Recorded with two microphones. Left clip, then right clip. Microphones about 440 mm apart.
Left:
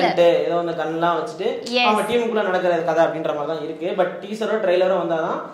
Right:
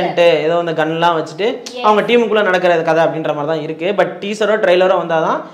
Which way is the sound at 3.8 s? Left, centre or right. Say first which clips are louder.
Right 6 dB; right.